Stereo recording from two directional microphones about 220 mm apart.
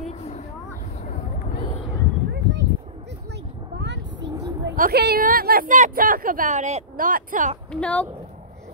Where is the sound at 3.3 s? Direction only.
55° right (ahead or behind).